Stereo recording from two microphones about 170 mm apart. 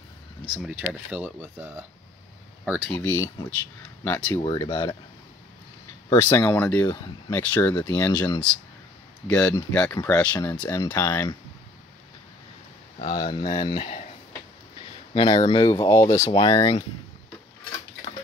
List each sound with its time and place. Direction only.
0.6 s speech: 5° right (ahead or behind)
2.6 s speech: centre (ahead or behind)
3.0 s speech: 15° left (ahead or behind)
4.4 s speech: 30° left (ahead or behind)
4.6 s speech: 15° left (ahead or behind)
6.0 s speech: 15° left (ahead or behind)
9.3 s speech: 5° left (ahead or behind)
13.0 s speech: 30° left (ahead or behind)
15.1 s speech: 25° left (ahead or behind)
15.9 s speech: 15° left (ahead or behind)